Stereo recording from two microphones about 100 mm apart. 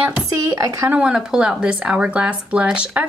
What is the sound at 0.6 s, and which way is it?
Speech, 35° right (ahead or behind).